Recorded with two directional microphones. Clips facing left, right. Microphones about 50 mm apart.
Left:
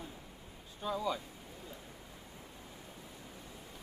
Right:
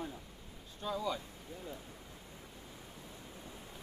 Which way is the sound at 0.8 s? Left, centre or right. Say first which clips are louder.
Left 1 dB; centre.